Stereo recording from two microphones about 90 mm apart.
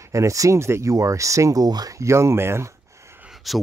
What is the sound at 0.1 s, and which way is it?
Speech, 35° right (ahead or behind).